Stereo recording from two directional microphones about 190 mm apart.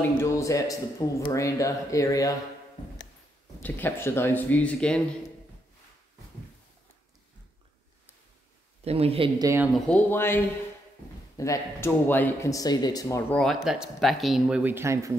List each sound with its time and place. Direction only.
0.2 s a man's voice: 15° left (ahead or behind)
3.6 s a man's voice: 10° left (ahead or behind)
8.8 s speech: 30° right (ahead or behind)
9.8 s a man's voice: 10° left (ahead or behind)
13.3 s speech: centre (ahead or behind); by 15.1 s 15° right (ahead or behind)